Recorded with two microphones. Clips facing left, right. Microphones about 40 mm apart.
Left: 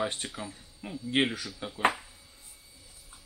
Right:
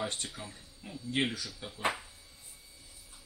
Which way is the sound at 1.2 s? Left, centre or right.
Left.